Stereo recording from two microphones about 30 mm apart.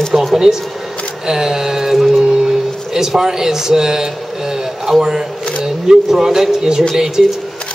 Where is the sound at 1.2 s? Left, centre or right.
Centre.